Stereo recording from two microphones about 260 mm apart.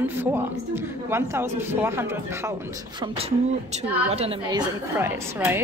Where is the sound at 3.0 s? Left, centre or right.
Centre.